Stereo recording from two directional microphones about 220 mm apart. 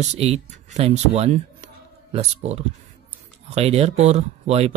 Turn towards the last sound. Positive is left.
turn(degrees=-30)  # may be behind; listen again after turning